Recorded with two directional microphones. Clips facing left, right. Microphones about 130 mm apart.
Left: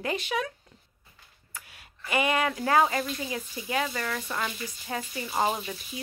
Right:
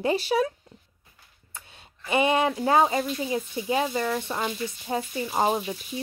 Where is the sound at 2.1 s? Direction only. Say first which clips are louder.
Right 4 dB; 30° right (ahead or behind).